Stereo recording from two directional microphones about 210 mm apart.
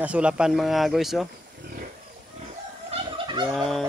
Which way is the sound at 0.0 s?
5° right (ahead or behind).